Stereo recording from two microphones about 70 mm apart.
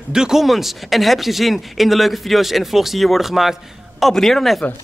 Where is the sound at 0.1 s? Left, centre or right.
Centre.